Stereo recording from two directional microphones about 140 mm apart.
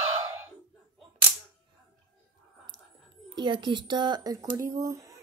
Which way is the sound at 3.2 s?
30° right (ahead or behind).